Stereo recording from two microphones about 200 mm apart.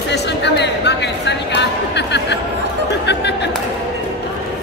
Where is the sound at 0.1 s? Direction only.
60° left (ahead or behind).